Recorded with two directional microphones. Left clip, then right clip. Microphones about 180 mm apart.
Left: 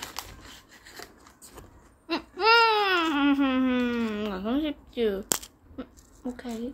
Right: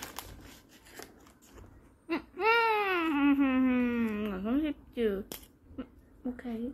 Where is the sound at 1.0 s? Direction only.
5° right (ahead or behind).